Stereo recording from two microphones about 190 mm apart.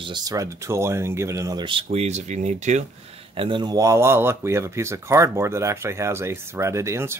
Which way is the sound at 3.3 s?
25° right (ahead or behind).